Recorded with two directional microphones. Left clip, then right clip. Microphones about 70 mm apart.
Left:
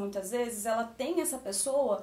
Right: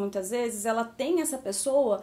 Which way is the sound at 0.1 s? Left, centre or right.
Right.